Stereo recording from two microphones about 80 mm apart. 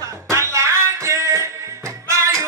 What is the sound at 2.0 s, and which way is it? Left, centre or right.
Music, right.